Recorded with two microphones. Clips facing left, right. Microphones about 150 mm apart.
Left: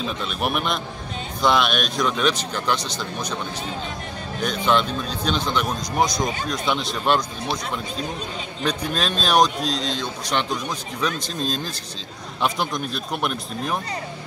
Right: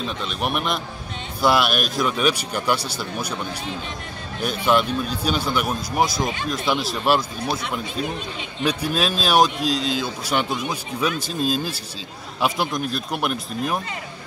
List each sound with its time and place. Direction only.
0.0 s speech: centre (ahead or behind)
4.4 s speech: 5° right (ahead or behind)
8.6 s speech: 5° right (ahead or behind)